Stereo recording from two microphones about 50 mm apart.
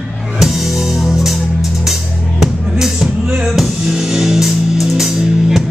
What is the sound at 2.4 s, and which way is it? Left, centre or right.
Music, centre.